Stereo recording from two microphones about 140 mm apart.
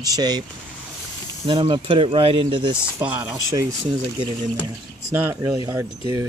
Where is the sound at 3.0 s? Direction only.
10° right (ahead or behind).